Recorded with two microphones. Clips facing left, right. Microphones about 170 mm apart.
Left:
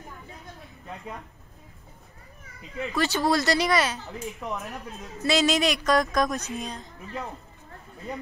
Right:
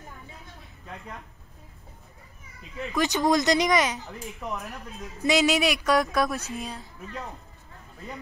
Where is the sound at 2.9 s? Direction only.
15° right (ahead or behind).